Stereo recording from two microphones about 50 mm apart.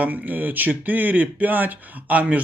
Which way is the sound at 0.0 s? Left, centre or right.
Right.